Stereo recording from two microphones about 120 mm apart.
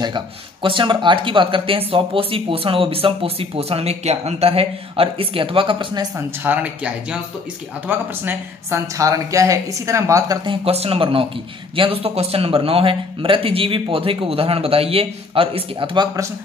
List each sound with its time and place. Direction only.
0.0 s speech: 40° right (ahead or behind)
6.1 s speech: 15° right (ahead or behind); by 10.5 s 30° right (ahead or behind)
10.5 s speech: 55° right (ahead or behind)